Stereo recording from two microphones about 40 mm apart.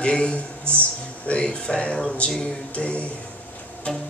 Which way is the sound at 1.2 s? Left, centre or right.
Left.